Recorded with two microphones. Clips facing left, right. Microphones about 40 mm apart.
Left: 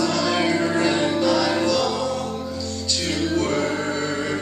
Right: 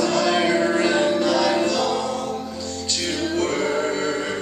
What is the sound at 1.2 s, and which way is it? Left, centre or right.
Music, right.